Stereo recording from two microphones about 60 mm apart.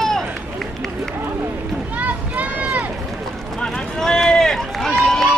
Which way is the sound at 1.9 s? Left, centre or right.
Right.